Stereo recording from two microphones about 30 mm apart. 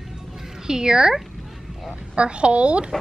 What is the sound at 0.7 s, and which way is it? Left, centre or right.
Speech, right.